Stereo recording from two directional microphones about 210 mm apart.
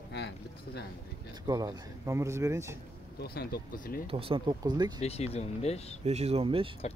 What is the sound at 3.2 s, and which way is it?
Speech, 45° left (ahead or behind).